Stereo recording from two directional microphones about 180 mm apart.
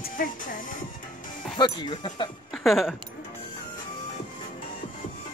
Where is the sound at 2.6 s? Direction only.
Centre (ahead or behind).